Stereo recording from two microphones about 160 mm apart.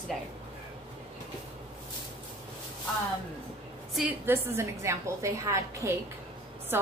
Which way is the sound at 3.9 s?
10° right (ahead or behind).